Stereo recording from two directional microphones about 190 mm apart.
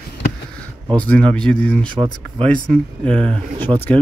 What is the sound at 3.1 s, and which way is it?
Speech, 30° right (ahead or behind).